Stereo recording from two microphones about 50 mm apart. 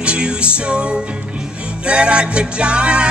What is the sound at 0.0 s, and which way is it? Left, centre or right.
Music, centre.